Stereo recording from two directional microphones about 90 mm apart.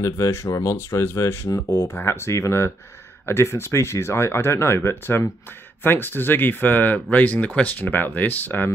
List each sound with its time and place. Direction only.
0.0 s speech: 35° left (ahead or behind)